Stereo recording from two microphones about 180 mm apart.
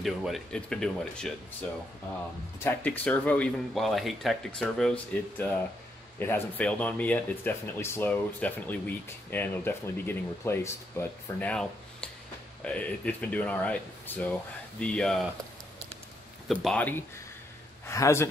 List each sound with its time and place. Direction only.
0.0 s speech: centre (ahead or behind)
16.4 s speech: centre (ahead or behind)